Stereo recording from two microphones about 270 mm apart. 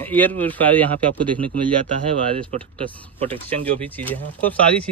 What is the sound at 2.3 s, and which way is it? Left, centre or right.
Speech, right.